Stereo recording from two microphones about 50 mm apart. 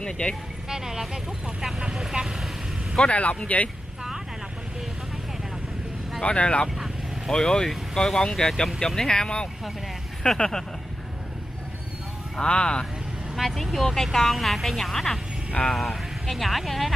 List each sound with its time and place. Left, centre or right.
0.0 s speech: centre
0.7 s speech: centre
3.1 s speech: left
6.2 s speech: left
7.2 s speech: centre
12.4 s speech: centre
13.4 s speech: centre